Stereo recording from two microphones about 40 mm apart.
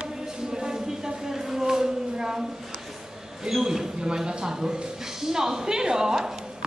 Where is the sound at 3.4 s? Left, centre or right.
Centre.